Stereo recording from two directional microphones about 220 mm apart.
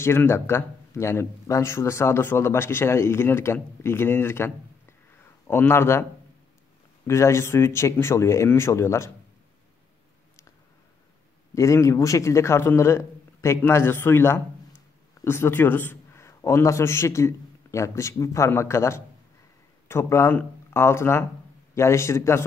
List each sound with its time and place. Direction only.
0.0 s speech: 10° left (ahead or behind)
7.1 s speech: 15° left (ahead or behind)
11.5 s speech: 15° left (ahead or behind)